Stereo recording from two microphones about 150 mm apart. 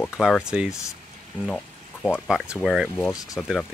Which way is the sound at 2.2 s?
5° right (ahead or behind).